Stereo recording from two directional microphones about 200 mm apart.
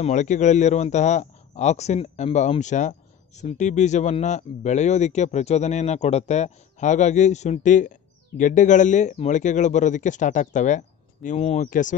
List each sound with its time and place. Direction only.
0.0 s a man's voice: 35° left (ahead or behind)